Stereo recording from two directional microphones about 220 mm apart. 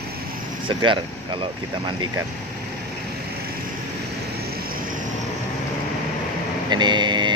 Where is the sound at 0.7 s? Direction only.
20° right (ahead or behind).